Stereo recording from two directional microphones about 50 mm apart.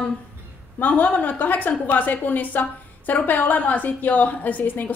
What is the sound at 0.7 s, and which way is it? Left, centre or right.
A woman's voice, left.